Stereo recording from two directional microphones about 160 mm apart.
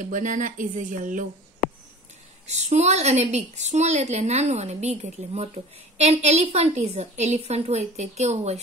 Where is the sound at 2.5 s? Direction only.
45° right (ahead or behind).